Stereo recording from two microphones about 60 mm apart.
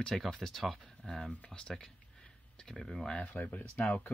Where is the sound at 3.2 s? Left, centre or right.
Left.